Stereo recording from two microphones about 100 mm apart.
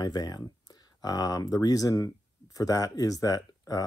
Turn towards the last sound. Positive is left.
turn(degrees=40)  # may be behind; listen again after turning